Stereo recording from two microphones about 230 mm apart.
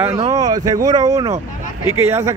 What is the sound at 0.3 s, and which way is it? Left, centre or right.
A man's voice, centre.